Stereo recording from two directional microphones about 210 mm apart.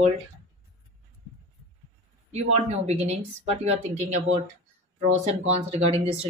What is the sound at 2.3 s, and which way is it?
Speech, 30° right (ahead or behind).